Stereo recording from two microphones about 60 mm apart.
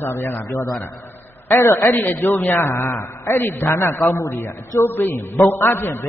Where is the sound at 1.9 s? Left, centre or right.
Left.